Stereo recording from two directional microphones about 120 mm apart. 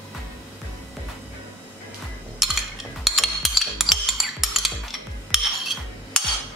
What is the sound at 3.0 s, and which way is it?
Stir, centre (ahead or behind).